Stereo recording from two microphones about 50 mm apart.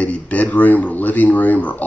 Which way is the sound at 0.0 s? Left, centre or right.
Left.